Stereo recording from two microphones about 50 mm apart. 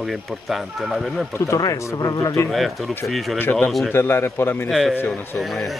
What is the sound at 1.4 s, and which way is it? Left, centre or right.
Speech, left.